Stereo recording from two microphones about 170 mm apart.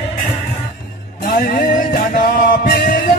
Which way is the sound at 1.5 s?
60° left (ahead or behind).